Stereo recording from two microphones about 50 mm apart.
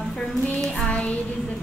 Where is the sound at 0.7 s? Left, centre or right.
Left.